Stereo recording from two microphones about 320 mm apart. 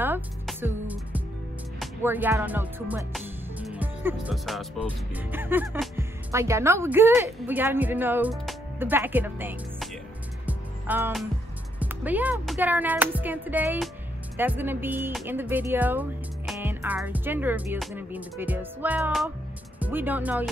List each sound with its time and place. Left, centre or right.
0.0 s music: centre
11.8 s speech: centre